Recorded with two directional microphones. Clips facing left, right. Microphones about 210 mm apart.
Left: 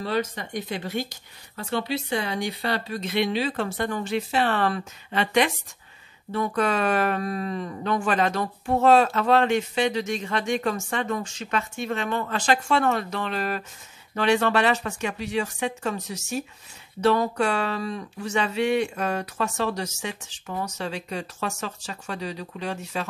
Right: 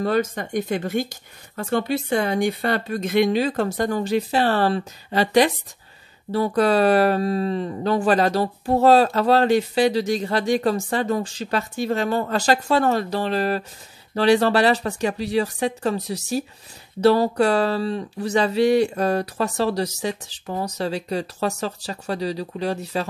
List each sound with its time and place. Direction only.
0.0 s speech: 45° right (ahead or behind)